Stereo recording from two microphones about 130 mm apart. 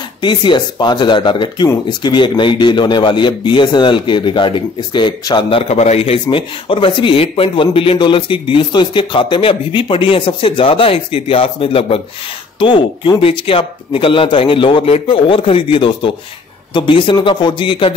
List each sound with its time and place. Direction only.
0.2 s a man's voice: 35° left (ahead or behind)
5.7 s a man's voice: 55° left (ahead or behind); by 17.9 s 40° left (ahead or behind)